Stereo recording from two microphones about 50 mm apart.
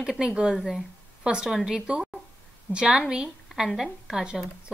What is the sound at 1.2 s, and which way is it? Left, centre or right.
A woman's voice, centre.